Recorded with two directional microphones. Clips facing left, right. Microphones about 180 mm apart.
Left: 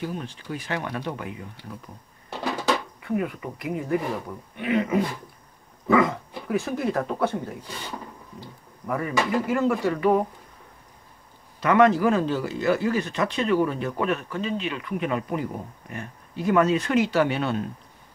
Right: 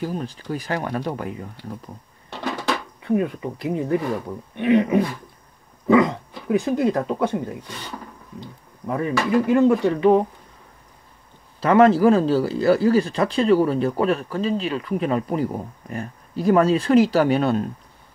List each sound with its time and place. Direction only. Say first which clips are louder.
0.0 s speech: right 4 dB; 40° right (ahead or behind)
3.0 s speech: right 5 dB; 30° right (ahead or behind)
8.4 s a sound: right 4 dB; 25° right (ahead or behind)
9.5 s speech: right 6 dB; 25° right (ahead or behind)
11.6 s speech: right 4 dB; 30° right (ahead or behind)